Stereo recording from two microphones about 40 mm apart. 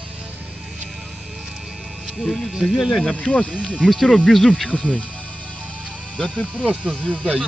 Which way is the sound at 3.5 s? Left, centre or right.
Right.